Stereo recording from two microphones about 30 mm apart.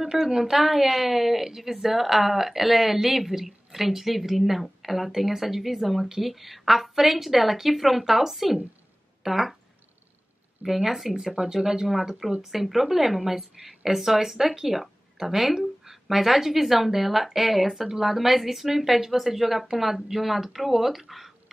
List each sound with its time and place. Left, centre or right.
0.1 s a woman's voice: centre
10.6 s a woman's voice: centre
12.4 s a woman's voice: centre